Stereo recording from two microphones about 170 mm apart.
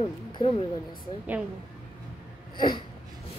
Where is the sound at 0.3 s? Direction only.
30° left (ahead or behind).